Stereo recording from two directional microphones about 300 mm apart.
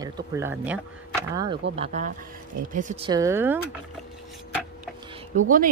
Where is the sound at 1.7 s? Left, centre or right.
Right.